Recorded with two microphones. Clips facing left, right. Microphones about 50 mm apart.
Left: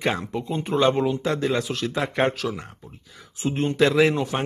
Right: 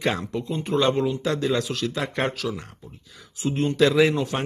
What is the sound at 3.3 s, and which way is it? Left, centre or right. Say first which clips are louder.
Speech: even; left.